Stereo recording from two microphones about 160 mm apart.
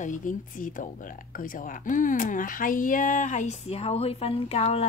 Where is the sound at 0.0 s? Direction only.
55° left (ahead or behind).